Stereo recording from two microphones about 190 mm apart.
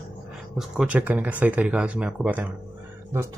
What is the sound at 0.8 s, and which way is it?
Speech, 5° right (ahead or behind).